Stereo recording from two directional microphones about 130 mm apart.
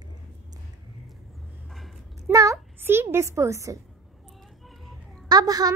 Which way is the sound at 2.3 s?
25° right (ahead or behind).